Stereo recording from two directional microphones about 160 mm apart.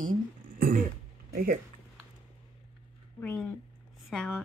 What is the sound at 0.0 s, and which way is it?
Throat clearing, 60° right (ahead or behind).